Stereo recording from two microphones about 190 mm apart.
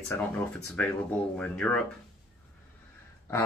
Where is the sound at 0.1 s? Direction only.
5° left (ahead or behind).